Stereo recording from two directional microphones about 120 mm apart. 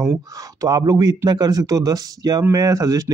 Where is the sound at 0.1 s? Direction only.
30° right (ahead or behind).